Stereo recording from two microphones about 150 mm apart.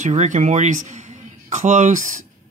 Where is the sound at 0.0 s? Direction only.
50° right (ahead or behind).